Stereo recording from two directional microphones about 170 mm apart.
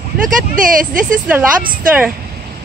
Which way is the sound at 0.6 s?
50° right (ahead or behind).